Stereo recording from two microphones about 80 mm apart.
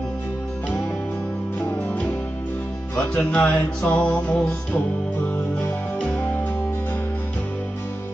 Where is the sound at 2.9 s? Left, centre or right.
Centre.